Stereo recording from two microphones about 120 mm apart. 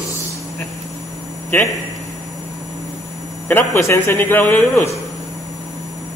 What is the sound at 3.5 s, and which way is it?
Speech, 20° left (ahead or behind).